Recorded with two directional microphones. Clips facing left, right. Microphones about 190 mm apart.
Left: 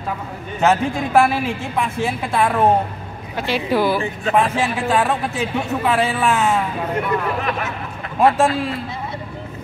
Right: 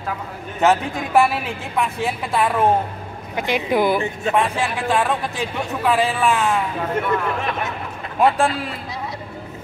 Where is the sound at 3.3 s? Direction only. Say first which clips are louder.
Even; 15° right (ahead or behind).